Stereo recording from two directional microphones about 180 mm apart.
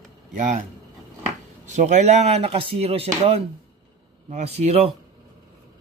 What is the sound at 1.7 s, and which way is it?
Speech, 40° right (ahead or behind).